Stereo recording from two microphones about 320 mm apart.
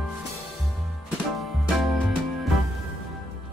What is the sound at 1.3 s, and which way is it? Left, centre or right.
Music, centre.